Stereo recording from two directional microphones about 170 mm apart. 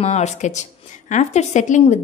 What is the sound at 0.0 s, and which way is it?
A woman's voice, 40° left (ahead or behind).